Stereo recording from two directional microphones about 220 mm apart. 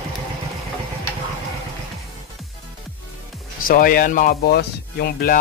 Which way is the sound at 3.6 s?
40° left (ahead or behind).